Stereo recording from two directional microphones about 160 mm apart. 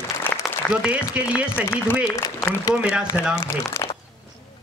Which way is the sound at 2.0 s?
15° left (ahead or behind).